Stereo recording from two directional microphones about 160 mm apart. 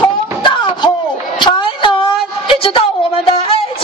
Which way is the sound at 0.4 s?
30° left (ahead or behind).